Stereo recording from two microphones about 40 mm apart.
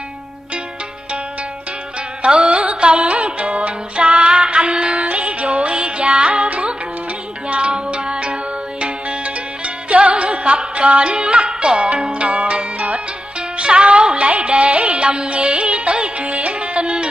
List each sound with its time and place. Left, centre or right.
2.2 s music: right
9.8 s music: right